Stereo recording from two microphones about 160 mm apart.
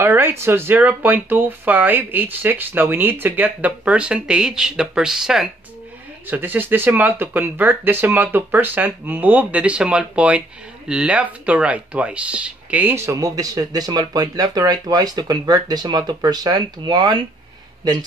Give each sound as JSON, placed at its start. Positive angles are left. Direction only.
{"t": 0.0, "sound": "speech", "side_deg": -15}